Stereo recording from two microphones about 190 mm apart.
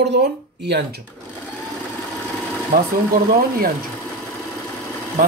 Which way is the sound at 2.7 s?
45° right (ahead or behind).